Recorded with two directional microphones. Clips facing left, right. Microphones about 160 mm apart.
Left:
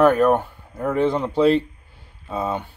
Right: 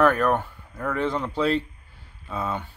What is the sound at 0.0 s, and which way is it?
Speech, 20° left (ahead or behind).